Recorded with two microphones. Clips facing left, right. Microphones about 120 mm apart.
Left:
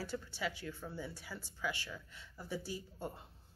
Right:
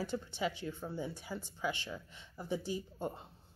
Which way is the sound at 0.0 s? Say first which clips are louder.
Right 4 dB; 20° right (ahead or behind).